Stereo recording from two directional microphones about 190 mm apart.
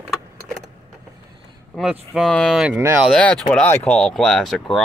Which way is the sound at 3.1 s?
5° left (ahead or behind).